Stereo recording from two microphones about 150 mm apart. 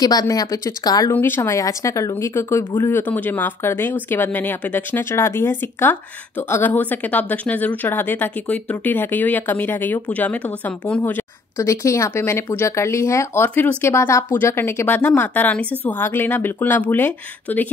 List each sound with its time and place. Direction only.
0.0 s speech: 25° left (ahead or behind)